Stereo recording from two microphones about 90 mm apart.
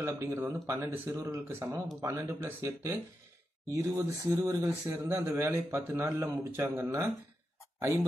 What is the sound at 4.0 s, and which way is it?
A man's voice, 30° right (ahead or behind).